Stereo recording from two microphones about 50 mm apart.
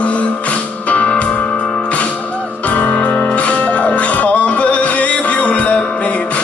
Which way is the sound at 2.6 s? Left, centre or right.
Left.